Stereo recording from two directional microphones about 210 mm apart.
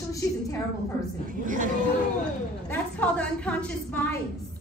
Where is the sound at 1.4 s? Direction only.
40° right (ahead or behind).